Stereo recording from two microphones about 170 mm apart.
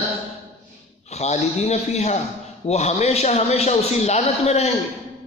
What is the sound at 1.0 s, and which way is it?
A man's voice, 40° left (ahead or behind).